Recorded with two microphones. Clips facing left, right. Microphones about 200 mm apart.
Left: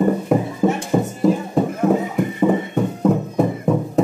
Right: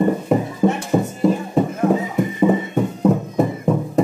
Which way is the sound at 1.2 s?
Centre (ahead or behind).